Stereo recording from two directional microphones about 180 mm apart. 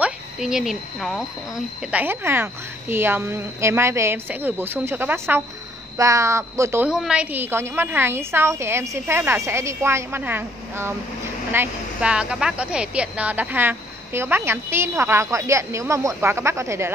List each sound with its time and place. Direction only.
0.0 s speech: 5° right (ahead or behind)
6.9 s speech: 5° right (ahead or behind)